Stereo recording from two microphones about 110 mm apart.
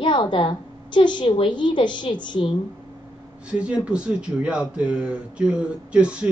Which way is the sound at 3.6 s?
10° right (ahead or behind).